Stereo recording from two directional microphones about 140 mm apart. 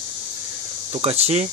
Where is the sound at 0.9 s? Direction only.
45° right (ahead or behind).